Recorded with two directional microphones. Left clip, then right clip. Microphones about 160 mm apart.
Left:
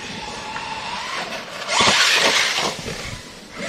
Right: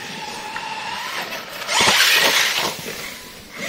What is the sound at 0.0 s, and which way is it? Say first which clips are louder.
Vehicle: even; 20° right (ahead or behind).